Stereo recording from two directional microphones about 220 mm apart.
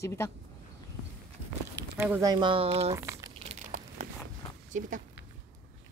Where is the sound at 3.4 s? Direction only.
30° right (ahead or behind).